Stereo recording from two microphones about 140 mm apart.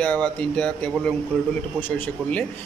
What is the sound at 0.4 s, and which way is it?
A man's voice, 5° left (ahead or behind).